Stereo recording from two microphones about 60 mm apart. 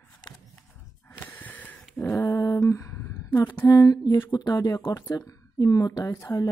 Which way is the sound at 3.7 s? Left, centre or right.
Left.